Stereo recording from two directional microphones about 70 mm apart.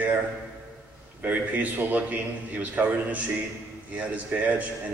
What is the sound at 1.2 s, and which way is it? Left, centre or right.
A man's voice, right.